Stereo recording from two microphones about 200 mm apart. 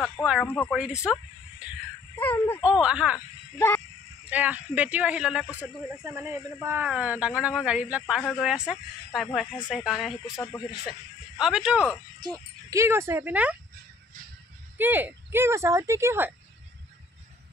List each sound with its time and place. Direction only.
0.0 s speech: centre (ahead or behind)
1.1 s speech: 5° right (ahead or behind)
2.1 s speech: 10° left (ahead or behind)
2.8 s speech: 5° right (ahead or behind)
3.5 s speech: 15° left (ahead or behind)
4.3 s speech: 10° right (ahead or behind)
10.3 s speech: 15° left (ahead or behind)
10.9 s speech: 5° right (ahead or behind)
12.2 s speech: 20° right (ahead or behind)
14.8 s speech: 10° right (ahead or behind)